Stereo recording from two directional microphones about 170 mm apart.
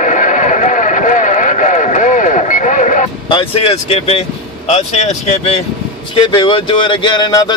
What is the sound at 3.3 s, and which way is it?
Speech, 35° left (ahead or behind).